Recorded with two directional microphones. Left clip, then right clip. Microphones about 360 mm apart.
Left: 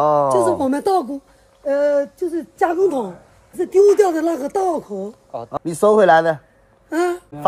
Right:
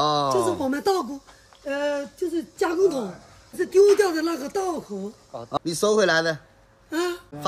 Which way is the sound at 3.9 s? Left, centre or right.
Left.